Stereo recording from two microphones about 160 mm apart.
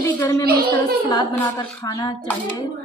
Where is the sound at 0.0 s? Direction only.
15° left (ahead or behind).